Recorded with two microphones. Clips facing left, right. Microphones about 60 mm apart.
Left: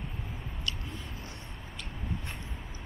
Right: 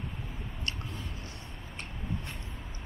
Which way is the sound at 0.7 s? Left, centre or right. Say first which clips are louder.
Even; right.